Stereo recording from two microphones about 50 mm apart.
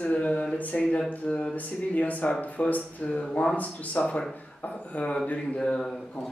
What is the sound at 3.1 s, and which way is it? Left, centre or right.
Speech, left.